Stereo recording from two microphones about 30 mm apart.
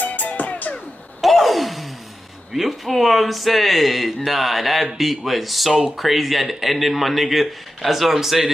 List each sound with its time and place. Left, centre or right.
0.0 s music: left
0.3 s music: left
1.2 s a sound: centre
2.5 s speech: centre